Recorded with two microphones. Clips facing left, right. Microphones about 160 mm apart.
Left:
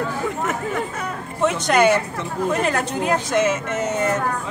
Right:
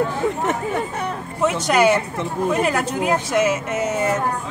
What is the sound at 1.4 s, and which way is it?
A woman's voice, 5° right (ahead or behind).